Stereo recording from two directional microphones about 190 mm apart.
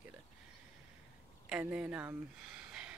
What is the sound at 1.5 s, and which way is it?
Speech, 5° right (ahead or behind).